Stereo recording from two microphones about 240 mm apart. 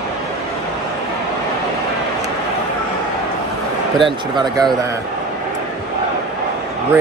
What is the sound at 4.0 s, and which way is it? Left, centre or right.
Speech, centre.